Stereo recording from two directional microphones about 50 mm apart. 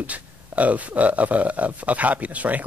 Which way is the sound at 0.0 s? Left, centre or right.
Right.